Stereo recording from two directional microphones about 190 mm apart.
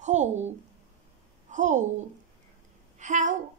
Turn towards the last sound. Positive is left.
turn(degrees=-40)  # may be behind; listen again after turning